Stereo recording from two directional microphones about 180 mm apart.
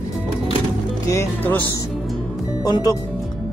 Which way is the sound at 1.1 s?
15° left (ahead or behind).